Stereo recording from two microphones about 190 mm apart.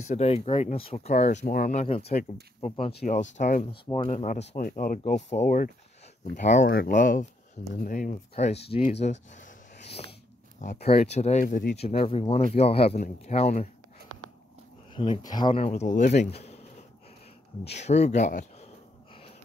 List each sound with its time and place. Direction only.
0.1 s speech: 35° left (ahead or behind)
9.0 s a sound: 40° left (ahead or behind)
10.6 s speech: 35° left (ahead or behind)
15.0 s speech: 25° left (ahead or behind)
17.6 s speech: 35° left (ahead or behind)